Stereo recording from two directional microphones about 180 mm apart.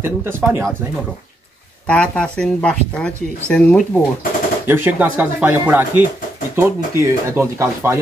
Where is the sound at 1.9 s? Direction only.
5° left (ahead or behind).